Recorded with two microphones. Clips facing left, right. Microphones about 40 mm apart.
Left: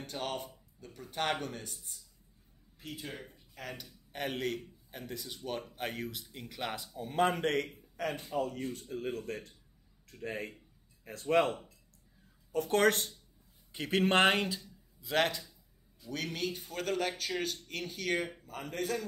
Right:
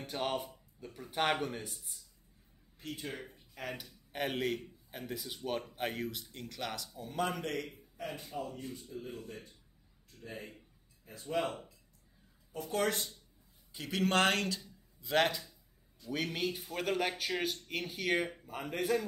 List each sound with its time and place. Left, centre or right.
0.0 s speech: centre
2.8 s a man's voice: centre
6.6 s speech: left
7.0 s a man's voice: left
12.5 s speech: left
13.7 s speech: left; by 14.6 s centre
15.0 s speech: centre